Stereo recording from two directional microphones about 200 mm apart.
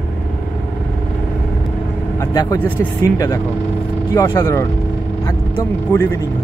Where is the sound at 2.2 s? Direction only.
15° left (ahead or behind).